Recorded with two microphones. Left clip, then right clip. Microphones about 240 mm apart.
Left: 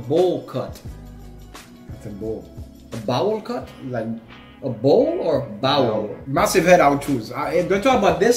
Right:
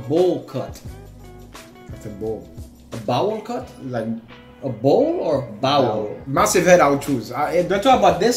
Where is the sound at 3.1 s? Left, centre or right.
Centre.